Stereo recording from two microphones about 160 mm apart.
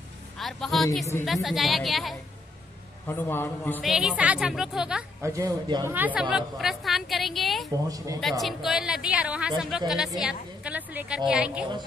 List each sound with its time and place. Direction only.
0.4 s a woman's voice: centre (ahead or behind)
3.1 s a man's voice: 15° left (ahead or behind)
3.8 s a woman's voice: 5° right (ahead or behind)
5.2 s speech: 20° right (ahead or behind)
5.9 s a woman's voice: 10° right (ahead or behind)
7.9 s speech: 20° right (ahead or behind)
8.2 s a woman's voice: centre (ahead or behind)